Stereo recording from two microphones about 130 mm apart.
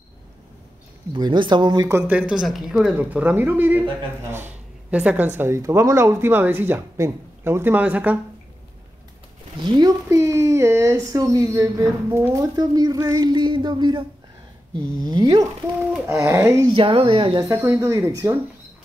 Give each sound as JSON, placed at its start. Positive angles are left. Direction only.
{"t": 1.1, "sound": "speech", "side_deg": -35}
{"t": 1.9, "sound": "speech", "side_deg": -15}
{"t": 9.6, "sound": "speech", "side_deg": -35}
{"t": 16.1, "sound": "speech", "side_deg": -20}
{"t": 16.6, "sound": "speech", "side_deg": -40}
{"t": 17.7, "sound": "speech", "side_deg": -25}